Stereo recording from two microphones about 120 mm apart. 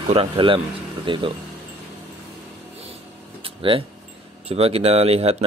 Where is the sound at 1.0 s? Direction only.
45° right (ahead or behind).